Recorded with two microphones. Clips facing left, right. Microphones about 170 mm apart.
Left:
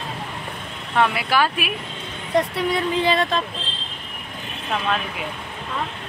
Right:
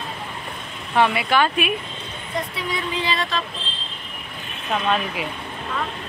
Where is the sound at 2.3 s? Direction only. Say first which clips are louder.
Left 7 dB; 60° left (ahead or behind).